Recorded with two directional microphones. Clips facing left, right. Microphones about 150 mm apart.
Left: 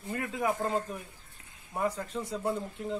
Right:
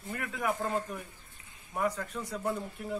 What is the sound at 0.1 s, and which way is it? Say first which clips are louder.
A man's voice: left 2 dB; 25° left (ahead or behind).